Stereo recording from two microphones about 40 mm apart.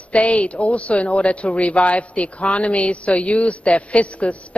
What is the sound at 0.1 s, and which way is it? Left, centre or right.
A man's voice, left.